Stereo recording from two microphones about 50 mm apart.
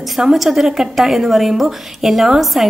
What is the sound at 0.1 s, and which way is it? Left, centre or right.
A woman's voice, centre.